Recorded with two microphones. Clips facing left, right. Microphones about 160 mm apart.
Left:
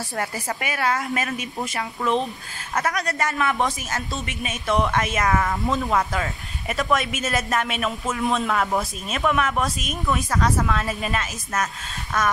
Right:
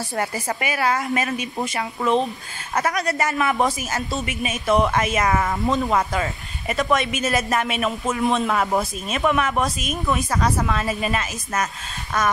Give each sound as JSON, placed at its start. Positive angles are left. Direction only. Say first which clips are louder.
{"t": 0.2, "sound": "speech", "louder": "right 3 dB", "side_deg": 0}